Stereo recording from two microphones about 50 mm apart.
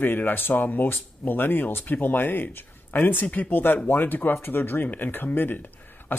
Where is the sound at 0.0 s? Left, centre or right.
Left.